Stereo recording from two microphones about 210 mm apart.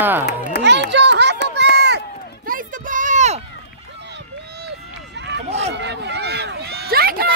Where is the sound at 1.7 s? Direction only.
50° right (ahead or behind).